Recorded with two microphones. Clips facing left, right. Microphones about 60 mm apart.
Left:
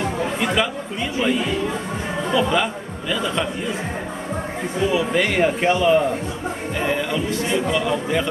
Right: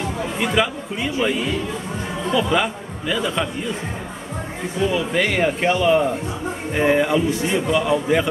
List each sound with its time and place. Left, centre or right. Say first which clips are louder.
0.4 s speech: right 4 dB; centre
4.8 s speech: left 1 dB; centre
6.8 s speech: right 6 dB; centre